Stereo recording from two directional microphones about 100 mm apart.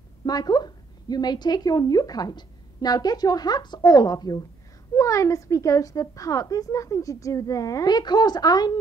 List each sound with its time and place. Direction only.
0.2 s a woman's voice: 40° left (ahead or behind)